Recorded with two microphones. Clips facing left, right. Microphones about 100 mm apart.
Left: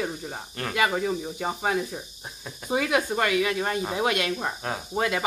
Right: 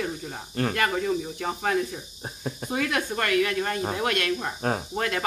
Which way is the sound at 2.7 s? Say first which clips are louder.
Left 4 dB; 10° left (ahead or behind).